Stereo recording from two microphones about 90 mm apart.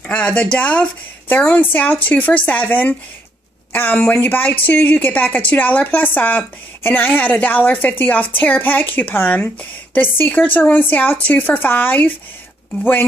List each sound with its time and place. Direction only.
0.1 s speech: 15° left (ahead or behind)